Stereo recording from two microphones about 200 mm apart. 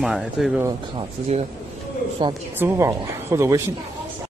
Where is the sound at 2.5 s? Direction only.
10° right (ahead or behind).